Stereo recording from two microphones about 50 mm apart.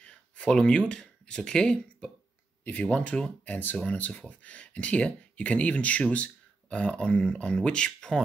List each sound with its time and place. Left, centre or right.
0.0 s speech: left